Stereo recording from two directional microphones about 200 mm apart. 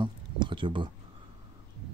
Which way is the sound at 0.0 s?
25° right (ahead or behind).